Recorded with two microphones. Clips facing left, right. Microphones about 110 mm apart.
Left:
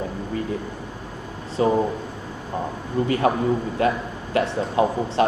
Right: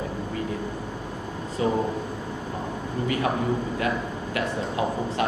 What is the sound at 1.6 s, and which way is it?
Speech, 35° left (ahead or behind).